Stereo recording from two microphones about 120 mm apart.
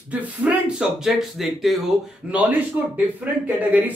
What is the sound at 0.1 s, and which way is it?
Speech, 10° right (ahead or behind).